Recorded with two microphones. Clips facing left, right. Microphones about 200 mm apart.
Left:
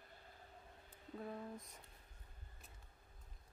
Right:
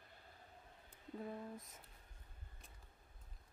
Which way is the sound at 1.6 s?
Centre (ahead or behind).